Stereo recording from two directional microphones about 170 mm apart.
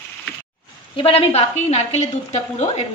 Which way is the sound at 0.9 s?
35° left (ahead or behind).